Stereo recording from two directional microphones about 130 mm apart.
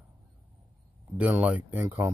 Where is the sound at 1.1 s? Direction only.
10° right (ahead or behind).